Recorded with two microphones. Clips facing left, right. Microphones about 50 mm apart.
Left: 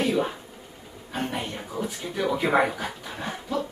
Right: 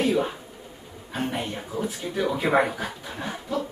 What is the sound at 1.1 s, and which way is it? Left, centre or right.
Speech, centre.